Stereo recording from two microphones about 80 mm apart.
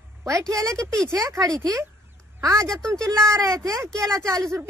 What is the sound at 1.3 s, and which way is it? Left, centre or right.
A woman's voice, right.